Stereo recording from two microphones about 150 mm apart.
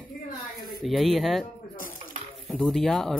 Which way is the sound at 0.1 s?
80° left.